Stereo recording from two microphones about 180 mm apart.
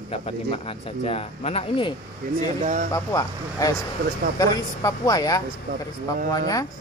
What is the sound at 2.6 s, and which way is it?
Speech, 40° right (ahead or behind).